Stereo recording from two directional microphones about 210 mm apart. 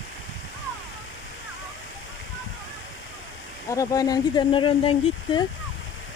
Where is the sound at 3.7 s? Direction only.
15° left (ahead or behind).